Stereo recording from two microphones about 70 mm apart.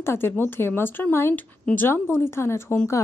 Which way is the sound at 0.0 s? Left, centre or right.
Left.